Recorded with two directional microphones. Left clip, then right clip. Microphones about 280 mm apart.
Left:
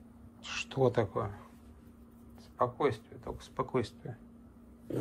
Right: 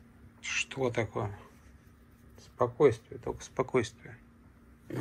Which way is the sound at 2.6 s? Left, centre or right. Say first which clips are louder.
Right 5 dB; centre.